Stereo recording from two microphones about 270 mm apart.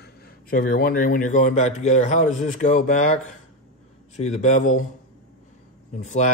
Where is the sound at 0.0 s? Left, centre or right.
Left.